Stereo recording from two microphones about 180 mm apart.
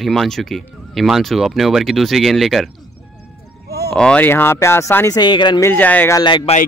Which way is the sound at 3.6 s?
60° right (ahead or behind).